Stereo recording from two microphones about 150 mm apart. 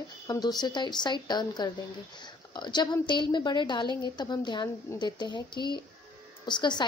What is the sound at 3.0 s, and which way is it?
A woman's voice, 30° left (ahead or behind).